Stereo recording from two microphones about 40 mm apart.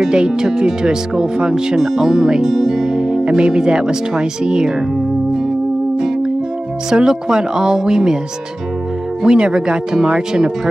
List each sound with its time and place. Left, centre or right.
0.0 s speech: centre
6.9 s speech: centre
9.2 s speech: centre